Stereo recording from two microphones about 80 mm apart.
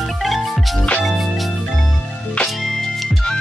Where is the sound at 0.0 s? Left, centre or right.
Centre.